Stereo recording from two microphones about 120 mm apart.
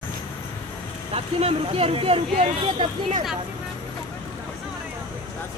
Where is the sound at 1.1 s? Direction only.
55° right (ahead or behind).